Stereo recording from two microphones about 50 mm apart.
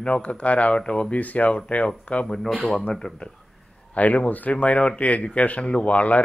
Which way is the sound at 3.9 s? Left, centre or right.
Left.